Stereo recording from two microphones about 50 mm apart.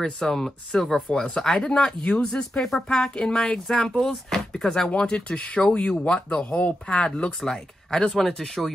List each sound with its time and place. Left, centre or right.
0.2 s speech: centre